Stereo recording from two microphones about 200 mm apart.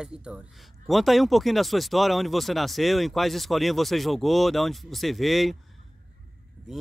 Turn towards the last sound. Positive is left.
turn(degrees=0)  # may be behind; listen again after turning